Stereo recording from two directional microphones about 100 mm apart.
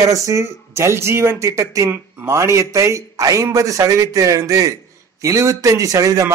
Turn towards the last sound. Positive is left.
turn(degrees=-30)  # may be behind; listen again after turning